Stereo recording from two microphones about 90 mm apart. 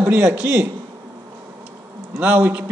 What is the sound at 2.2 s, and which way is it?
Speech, 20° right (ahead or behind).